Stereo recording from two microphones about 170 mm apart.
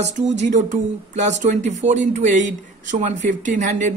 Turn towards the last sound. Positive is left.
turn(degrees=-45)  # may be behind; listen again after turning